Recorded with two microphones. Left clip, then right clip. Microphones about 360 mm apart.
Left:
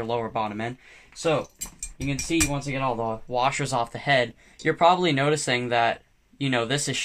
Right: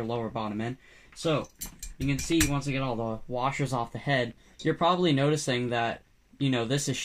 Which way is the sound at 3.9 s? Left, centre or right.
Left.